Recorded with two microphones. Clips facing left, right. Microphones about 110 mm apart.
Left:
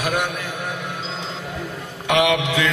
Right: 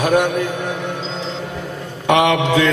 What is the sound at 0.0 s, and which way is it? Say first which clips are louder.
Mantra: right 8 dB; 35° right (ahead or behind).